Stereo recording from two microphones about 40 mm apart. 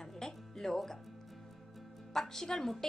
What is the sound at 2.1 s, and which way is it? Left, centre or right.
Speech, centre.